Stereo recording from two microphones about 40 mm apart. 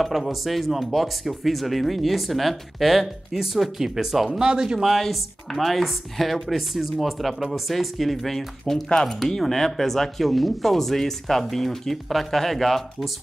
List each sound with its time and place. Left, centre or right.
0.0 s speech: centre
4.3 s speech: centre
4.8 s speech: centre